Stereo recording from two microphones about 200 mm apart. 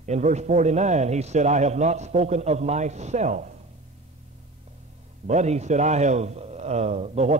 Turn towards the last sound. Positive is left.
turn(degrees=-30)  # may be behind; listen again after turning